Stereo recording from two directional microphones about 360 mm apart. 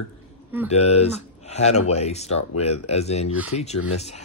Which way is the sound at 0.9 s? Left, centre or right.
Centre.